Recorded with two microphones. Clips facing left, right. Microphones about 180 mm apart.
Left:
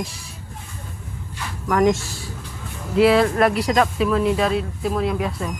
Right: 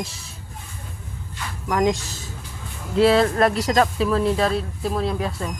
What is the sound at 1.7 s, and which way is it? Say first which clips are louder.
Speech: left 3 dB; 15° right (ahead or behind).